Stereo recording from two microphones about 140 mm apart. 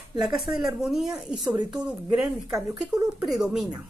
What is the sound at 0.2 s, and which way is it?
A woman's voice, 5° right (ahead or behind).